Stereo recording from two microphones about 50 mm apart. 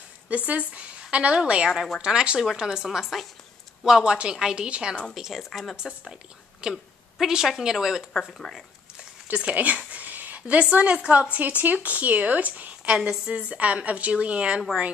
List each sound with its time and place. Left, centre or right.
0.5 s a woman's voice: right; by 3.3 s centre
3.8 s a woman's voice: centre
5.1 s a woman's voice: centre
5.5 s speech: centre
5.8 s a woman's voice: centre
8.3 s speech: centre
9.3 s speech: right